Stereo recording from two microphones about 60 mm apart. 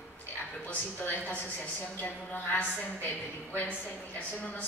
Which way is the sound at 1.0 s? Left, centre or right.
Left.